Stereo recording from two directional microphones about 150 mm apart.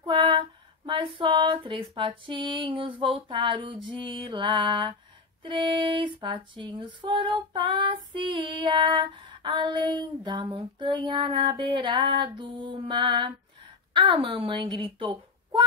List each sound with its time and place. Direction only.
0.0 s female singing: 30° right (ahead or behind)
13.9 s speech: 35° right (ahead or behind)